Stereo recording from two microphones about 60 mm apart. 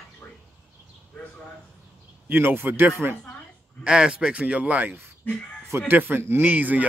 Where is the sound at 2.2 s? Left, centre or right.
Right.